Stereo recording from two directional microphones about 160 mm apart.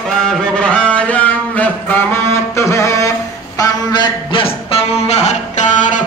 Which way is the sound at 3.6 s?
30° left (ahead or behind).